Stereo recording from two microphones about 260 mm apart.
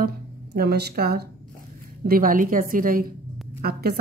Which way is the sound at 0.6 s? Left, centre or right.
Right.